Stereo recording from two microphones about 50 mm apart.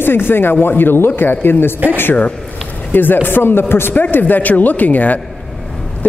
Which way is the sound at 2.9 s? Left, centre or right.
Left.